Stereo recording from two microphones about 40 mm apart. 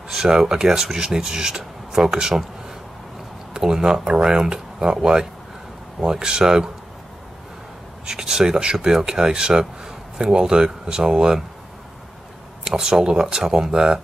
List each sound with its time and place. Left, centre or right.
0.1 s speech: centre
3.5 s speech: centre
8.1 s speech: centre
12.6 s speech: centre